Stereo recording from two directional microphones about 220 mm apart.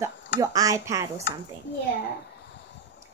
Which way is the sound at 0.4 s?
15° right (ahead or behind).